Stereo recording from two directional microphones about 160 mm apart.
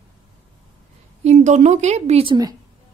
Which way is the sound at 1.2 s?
45° right (ahead or behind).